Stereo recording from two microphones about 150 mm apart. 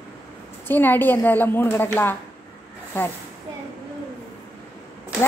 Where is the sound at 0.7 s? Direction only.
15° left (ahead or behind).